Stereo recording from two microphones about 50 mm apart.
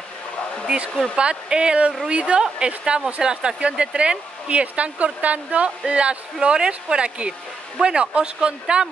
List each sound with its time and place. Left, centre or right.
1.1 s speech: centre